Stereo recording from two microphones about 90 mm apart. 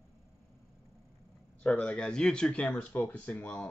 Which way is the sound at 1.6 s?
10° left (ahead or behind).